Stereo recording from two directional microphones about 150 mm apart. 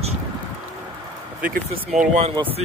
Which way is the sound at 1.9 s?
50° right (ahead or behind).